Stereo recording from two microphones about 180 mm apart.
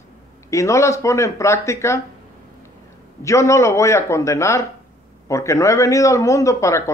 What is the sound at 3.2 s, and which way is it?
Speech, 15° left (ahead or behind).